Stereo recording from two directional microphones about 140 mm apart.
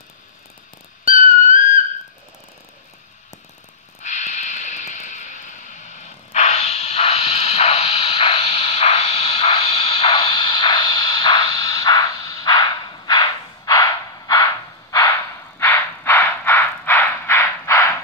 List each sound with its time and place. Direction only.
1.0 s music: 70° left (ahead or behind)
4.0 s vehicle: 60° left (ahead or behind)
8.1 s radio: 35° left (ahead or behind)
15.6 s a sound: 15° left (ahead or behind)